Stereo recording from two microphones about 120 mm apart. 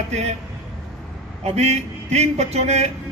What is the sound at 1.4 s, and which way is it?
Speech, 65° right (ahead or behind).